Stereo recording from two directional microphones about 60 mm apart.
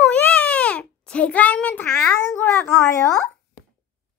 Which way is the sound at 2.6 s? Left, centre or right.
Left.